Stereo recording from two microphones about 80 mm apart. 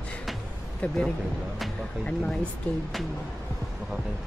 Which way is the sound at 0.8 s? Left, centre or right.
Centre.